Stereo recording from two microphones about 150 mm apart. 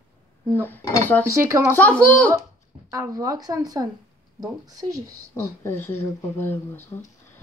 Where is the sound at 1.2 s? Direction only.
20° right (ahead or behind).